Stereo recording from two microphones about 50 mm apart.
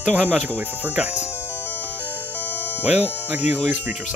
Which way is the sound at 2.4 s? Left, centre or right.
Left.